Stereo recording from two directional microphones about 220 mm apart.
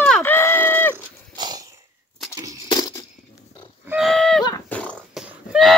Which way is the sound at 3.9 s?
Centre (ahead or behind).